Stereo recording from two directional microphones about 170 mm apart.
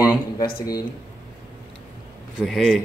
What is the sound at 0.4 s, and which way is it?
Speech, 20° left (ahead or behind).